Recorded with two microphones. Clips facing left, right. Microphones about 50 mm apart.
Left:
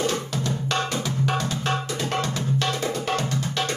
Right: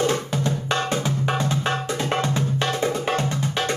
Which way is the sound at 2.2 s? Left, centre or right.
Right.